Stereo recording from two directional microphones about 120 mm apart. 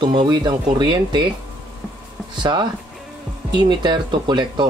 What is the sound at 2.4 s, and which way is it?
Speech, 40° right (ahead or behind).